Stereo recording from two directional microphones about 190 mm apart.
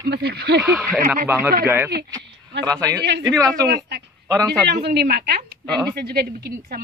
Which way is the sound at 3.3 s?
20° right (ahead or behind).